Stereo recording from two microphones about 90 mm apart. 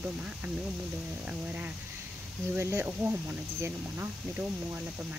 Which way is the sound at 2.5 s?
25° right (ahead or behind).